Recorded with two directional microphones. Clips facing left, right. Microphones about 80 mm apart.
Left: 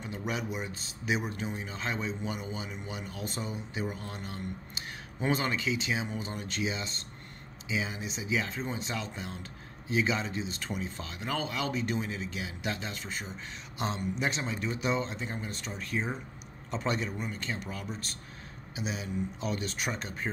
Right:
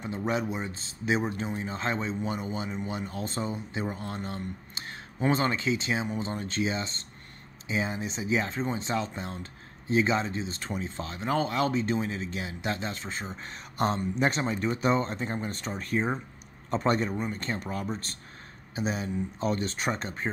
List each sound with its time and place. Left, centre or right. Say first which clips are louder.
0.0 s a man's voice: right 5 dB; right
13.7 s speech: right 6 dB; right